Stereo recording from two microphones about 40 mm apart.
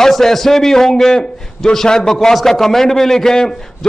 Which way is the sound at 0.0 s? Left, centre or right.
Centre.